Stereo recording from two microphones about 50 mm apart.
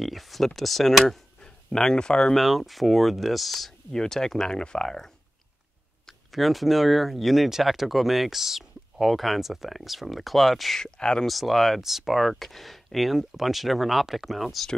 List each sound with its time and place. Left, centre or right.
0.0 s speech: centre
2.3 s speech: centre
3.9 s speech: centre
6.3 s speech: centre
10.8 s speech: centre
11.2 s speech: centre